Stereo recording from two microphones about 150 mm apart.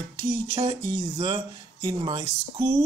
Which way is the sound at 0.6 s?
35° right (ahead or behind).